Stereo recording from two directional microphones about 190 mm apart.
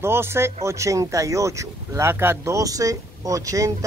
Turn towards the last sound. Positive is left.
turn(degrees=-15)  # may be behind; listen again after turning